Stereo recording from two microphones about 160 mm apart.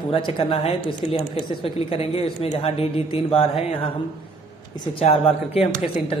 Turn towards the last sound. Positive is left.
turn(degrees=35)  # may be behind; listen again after turning